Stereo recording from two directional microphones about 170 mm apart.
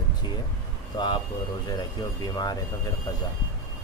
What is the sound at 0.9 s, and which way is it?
Speech, 25° left (ahead or behind).